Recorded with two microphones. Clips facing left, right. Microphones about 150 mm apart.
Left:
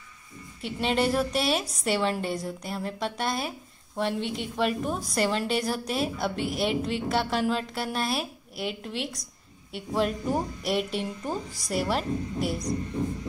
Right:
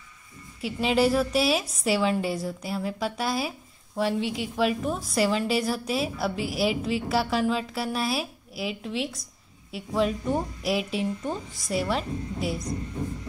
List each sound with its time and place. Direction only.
0.6 s a woman's voice: 5° right (ahead or behind)